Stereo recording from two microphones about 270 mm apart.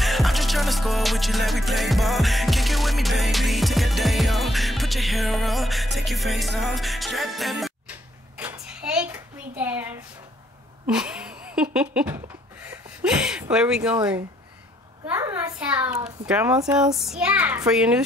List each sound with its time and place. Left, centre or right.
0.0 s music: centre
8.4 s a sound: centre
13.0 s a child's voice: centre